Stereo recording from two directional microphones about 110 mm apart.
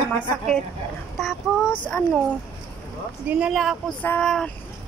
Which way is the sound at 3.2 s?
10° right (ahead or behind).